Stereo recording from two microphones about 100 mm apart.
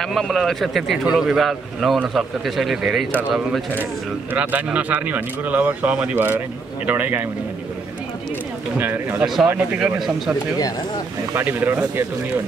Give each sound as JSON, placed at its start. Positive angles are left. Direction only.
{"t": 0.0, "sound": "a man's voice", "side_deg": 5}
{"t": 3.1, "sound": "speech", "side_deg": -15}
{"t": 8.7, "sound": "speech", "side_deg": -20}
{"t": 9.2, "sound": "a man's voice", "side_deg": -5}
{"t": 11.3, "sound": "speech", "side_deg": -20}